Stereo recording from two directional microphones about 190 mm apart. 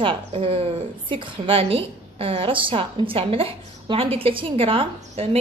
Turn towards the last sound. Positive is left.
turn(degrees=-30)  # may be behind; listen again after turning